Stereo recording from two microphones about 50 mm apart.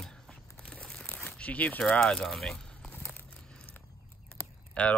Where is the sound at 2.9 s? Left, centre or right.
Left.